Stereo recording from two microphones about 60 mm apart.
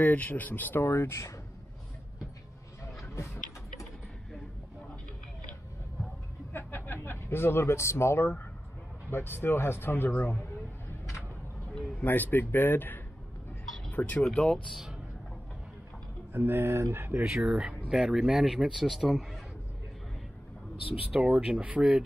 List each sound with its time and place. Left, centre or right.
0.0 s speech: left
0.8 s speech: left
2.8 s a sound: left
6.5 s a sound: left
9.1 s speech: left
12.0 s speech: left
14.2 s speech: centre
16.3 s speech: right
17.5 s speech: centre
20.8 s speech: right